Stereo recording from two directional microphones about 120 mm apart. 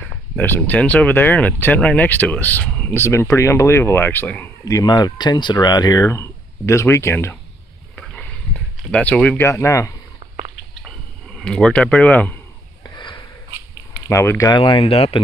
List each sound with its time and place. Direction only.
0.4 s speech: 15° left (ahead or behind)
4.6 s speech: 30° left (ahead or behind)
8.0 s a sound: 10° left (ahead or behind)
9.4 s speech: 25° left (ahead or behind)
11.3 s speech: 5° left (ahead or behind)
12.9 s sniff: 40° left (ahead or behind)
14.0 s speech: 20° left (ahead or behind)
14.5 s speech: 45° left (ahead or behind)